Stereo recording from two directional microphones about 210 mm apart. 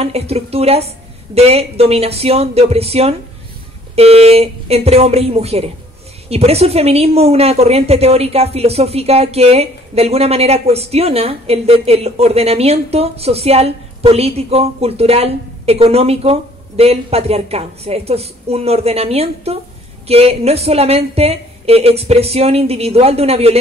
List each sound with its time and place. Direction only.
0.0 s a woman's voice: 30° right (ahead or behind)